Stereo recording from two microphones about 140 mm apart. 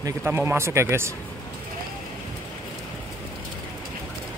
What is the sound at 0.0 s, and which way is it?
Speech, 15° right (ahead or behind).